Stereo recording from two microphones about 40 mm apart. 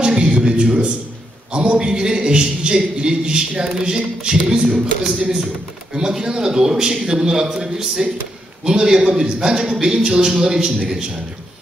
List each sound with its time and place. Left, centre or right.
0.1 s music: centre
1.5 s a man's voice: right